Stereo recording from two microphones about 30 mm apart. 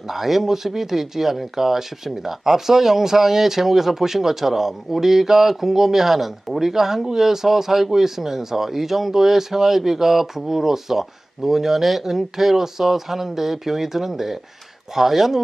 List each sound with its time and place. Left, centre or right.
0.1 s speech: centre